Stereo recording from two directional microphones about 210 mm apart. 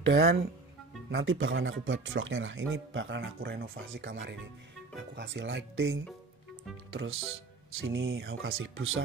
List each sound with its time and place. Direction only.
0.0 s speech: 55° right (ahead or behind)
1.2 s speech: 65° right (ahead or behind)
7.8 s speech: 50° right (ahead or behind); by 9.0 s 70° right (ahead or behind)